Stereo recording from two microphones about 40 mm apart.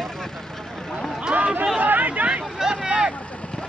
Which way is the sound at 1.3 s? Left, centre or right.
Right.